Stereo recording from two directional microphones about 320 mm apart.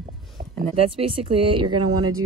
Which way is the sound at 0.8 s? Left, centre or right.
Centre.